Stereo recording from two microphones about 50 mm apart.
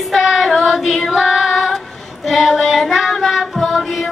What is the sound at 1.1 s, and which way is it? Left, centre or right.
Female singing, centre.